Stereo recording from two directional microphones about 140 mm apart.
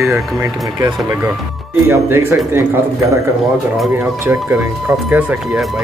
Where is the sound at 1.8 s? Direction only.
15° right (ahead or behind).